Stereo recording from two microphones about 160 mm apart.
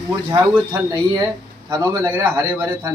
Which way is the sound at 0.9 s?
25° right (ahead or behind).